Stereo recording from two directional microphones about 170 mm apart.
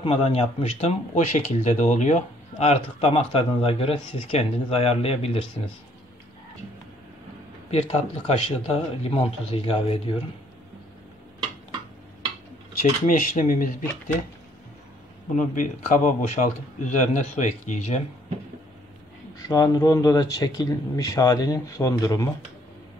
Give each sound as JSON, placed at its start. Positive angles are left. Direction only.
{"t": 0.0, "sound": "speech", "side_deg": 35}
{"t": 7.7, "sound": "speech", "side_deg": 35}
{"t": 13.0, "sound": "a man's voice", "side_deg": 50}
{"t": 15.3, "sound": "a man's voice", "side_deg": 50}
{"t": 19.3, "sound": "speech", "side_deg": 20}